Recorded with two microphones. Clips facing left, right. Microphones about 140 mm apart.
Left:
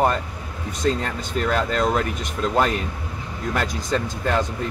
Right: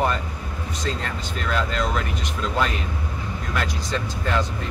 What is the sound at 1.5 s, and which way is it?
Speech, 45° left (ahead or behind).